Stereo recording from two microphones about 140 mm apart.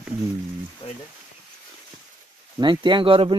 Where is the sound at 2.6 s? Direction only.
35° right (ahead or behind).